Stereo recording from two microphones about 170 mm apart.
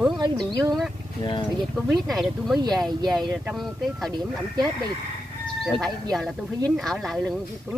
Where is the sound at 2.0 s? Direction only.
Centre (ahead or behind).